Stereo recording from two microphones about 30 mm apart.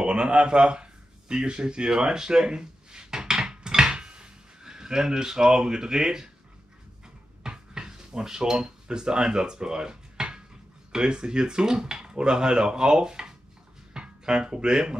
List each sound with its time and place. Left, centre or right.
0.0 s speech: right
1.3 s a sound: right
7.4 s dishes: right
11.0 s speech: right